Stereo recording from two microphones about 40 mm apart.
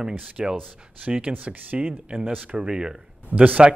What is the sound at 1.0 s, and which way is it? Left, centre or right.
Speech, right.